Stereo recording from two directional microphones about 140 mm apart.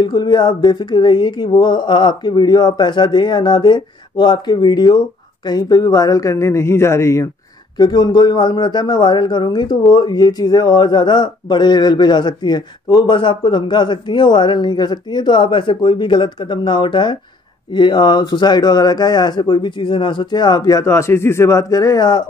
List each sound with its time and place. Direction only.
0.0 s a man's voice: 30° left (ahead or behind)
7.7 s a man's voice: 30° left (ahead or behind)